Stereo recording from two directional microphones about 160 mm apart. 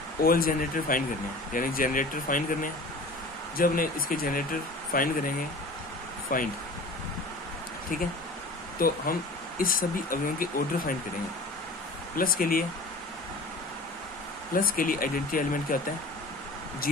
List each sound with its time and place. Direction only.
0.2 s speech: 65° left (ahead or behind)
6.3 s speech: 60° left (ahead or behind)
8.7 s speech: 65° left (ahead or behind)
12.2 s speech: 65° left (ahead or behind)
14.5 s speech: 60° left (ahead or behind)
16.8 s speech: 65° left (ahead or behind)